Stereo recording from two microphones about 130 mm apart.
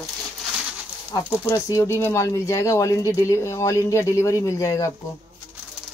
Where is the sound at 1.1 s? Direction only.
25° left (ahead or behind).